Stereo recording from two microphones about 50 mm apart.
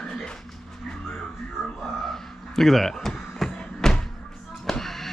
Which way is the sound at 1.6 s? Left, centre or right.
Centre.